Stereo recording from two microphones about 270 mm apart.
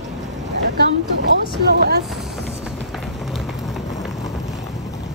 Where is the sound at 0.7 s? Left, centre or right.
Right.